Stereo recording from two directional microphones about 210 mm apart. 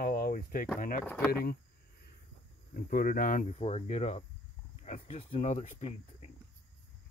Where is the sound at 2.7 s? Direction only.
45° left (ahead or behind).